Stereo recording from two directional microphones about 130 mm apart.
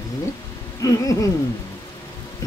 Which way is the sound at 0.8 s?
25° left (ahead or behind).